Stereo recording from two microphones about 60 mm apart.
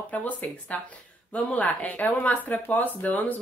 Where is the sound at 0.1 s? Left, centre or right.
Left.